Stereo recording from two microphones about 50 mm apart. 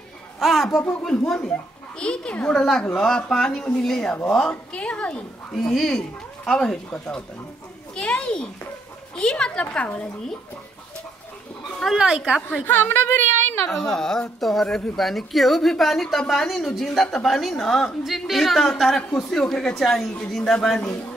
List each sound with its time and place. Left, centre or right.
0.4 s a woman's voice: centre
0.7 s a woman's voice: centre
2.5 s a woman's voice: centre
5.5 s a woman's voice: centre
9.8 s a woman's voice: left
11.8 s a woman's voice: centre
12.6 s a woman's voice: left
13.7 s a woman's voice: centre